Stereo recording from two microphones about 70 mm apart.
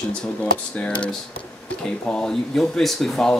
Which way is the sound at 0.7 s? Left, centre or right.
Centre.